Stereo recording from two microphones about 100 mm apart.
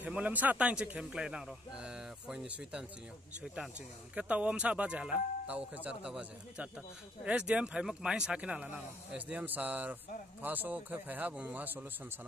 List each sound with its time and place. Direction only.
0.0 s a man's voice: 15° right (ahead or behind)
4.1 s a man's voice: 10° right (ahead or behind)